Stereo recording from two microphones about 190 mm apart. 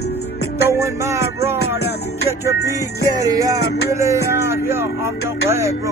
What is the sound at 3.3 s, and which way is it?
Speech, 20° right (ahead or behind).